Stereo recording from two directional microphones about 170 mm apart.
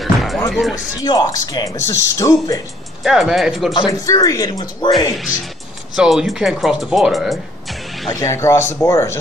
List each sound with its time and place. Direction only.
0.0 s music: centre (ahead or behind)
0.5 s speech: centre (ahead or behind)
1.0 s speech: 25° left (ahead or behind)
3.0 s speech: centre (ahead or behind)
3.7 s speech: 25° left (ahead or behind)
5.9 s speech: centre (ahead or behind)
8.1 s speech: 20° left (ahead or behind)